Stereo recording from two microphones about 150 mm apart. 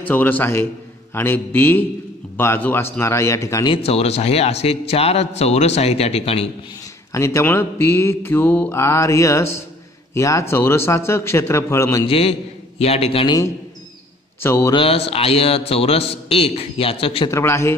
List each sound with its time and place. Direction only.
0.0 s mantra: 10° left (ahead or behind)
3.6 s a man's voice: 40° left (ahead or behind)
7.1 s mantra: 20° left (ahead or behind)
12.1 s a man's voice: 40° left (ahead or behind)
14.4 s mantra: 15° left (ahead or behind)
14.7 s a man's voice: 40° left (ahead or behind)
17.3 s mantra: 20° left (ahead or behind)